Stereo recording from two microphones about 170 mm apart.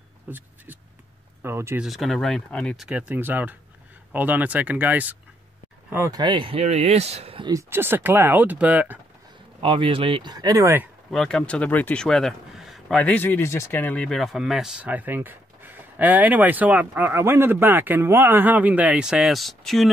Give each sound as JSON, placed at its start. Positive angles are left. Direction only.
{"t": 0.3, "sound": "speech", "side_deg": -10}
{"t": 1.8, "sound": "speech", "side_deg": 0}
{"t": 6.2, "sound": "speech", "side_deg": -30}
{"t": 7.5, "sound": "speech", "side_deg": -15}
{"t": 9.6, "sound": "speech", "side_deg": -30}
{"t": 11.1, "sound": "speech", "side_deg": 5}